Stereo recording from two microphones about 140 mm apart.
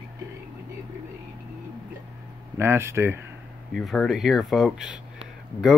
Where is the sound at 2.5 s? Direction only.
20° right (ahead or behind).